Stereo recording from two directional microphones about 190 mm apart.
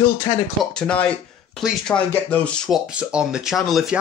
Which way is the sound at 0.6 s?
5° left (ahead or behind).